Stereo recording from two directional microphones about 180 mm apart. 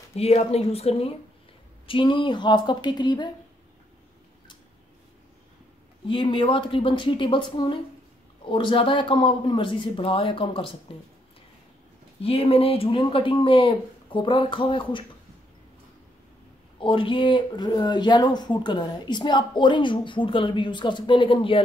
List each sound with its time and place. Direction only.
0.1 s a woman's voice: 35° left (ahead or behind)
6.0 s a woman's voice: 30° left (ahead or behind)
12.2 s speech: 30° left (ahead or behind)
16.8 s speech: 30° left (ahead or behind)